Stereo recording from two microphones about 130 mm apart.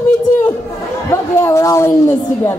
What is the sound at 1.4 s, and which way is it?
Speech, 25° left (ahead or behind).